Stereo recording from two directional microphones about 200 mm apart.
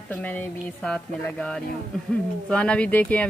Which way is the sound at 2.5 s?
5° left (ahead or behind).